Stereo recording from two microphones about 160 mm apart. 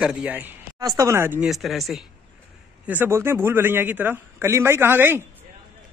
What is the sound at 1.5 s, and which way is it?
Speech, centre (ahead or behind).